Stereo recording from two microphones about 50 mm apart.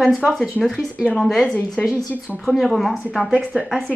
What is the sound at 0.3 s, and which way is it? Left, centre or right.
A woman's voice, centre.